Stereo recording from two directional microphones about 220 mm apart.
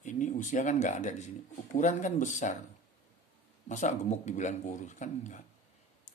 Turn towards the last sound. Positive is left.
turn(degrees=35)  # may be behind; listen again after turning